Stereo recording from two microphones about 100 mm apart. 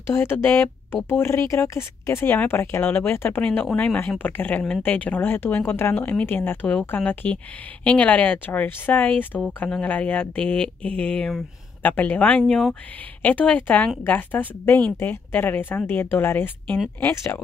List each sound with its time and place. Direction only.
0.0 s speech: 25° left (ahead or behind)